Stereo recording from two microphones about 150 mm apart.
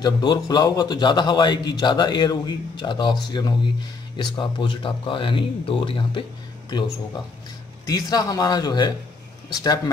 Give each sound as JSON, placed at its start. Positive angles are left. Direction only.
{"t": 0.0, "sound": "a man's voice", "side_deg": 30}
{"t": 7.8, "sound": "a man's voice", "side_deg": 25}